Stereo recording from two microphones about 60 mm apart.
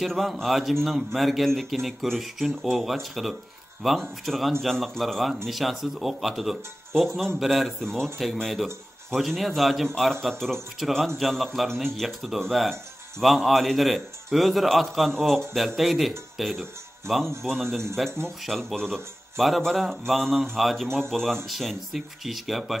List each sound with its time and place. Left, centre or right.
0.0 s speech: centre